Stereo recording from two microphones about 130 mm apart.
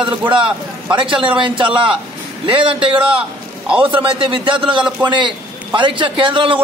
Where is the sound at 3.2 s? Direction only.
10° right (ahead or behind).